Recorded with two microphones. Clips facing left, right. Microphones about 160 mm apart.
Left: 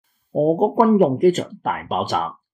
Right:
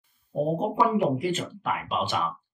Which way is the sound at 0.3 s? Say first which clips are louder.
Left 9 dB; 40° left (ahead or behind).